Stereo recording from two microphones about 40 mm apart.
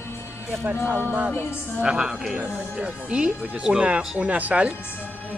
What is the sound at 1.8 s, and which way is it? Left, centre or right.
A woman's voice, centre.